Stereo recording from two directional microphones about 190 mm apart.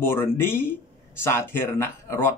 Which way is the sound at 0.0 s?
10° left (ahead or behind).